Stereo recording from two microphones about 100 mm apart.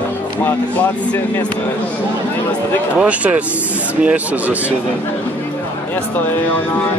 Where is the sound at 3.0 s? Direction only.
15° right (ahead or behind).